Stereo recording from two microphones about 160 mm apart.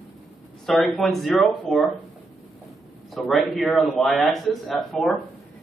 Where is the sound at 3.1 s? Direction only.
Centre (ahead or behind).